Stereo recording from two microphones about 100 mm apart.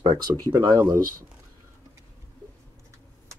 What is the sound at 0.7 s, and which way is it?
Speech, 30° right (ahead or behind).